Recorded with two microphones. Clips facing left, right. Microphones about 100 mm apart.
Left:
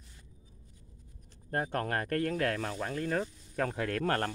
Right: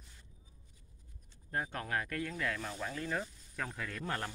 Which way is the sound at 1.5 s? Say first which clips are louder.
Left 5 dB; 50° left (ahead or behind).